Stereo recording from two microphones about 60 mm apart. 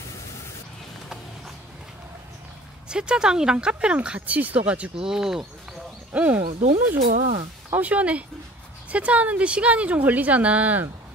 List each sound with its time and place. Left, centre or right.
2.9 s speech: centre
5.0 s speech: centre
6.1 s a woman's voice: right